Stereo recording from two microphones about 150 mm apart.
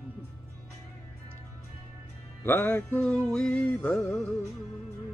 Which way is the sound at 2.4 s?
10° left (ahead or behind).